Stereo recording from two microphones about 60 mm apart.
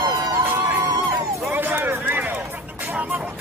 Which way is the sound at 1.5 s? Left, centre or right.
Right.